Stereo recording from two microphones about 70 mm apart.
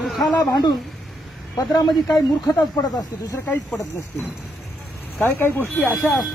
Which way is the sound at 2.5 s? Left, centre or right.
Left.